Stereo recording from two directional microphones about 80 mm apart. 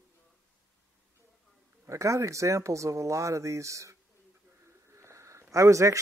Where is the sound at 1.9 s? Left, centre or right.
Right.